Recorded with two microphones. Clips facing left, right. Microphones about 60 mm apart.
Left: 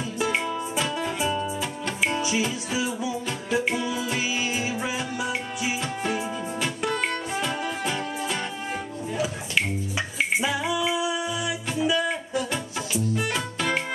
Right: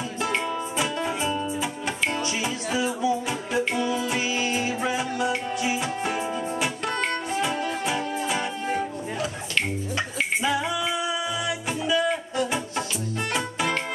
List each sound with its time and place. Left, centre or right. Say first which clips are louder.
0.2 s music: left 1 dB; centre
1.0 s music: even; centre
2.0 s music: left 3 dB; centre
10.4 s music: even; centre